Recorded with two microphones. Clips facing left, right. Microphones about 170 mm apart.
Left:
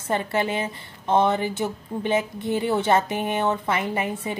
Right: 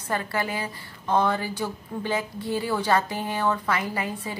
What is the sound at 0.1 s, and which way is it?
Speech, 25° left (ahead or behind).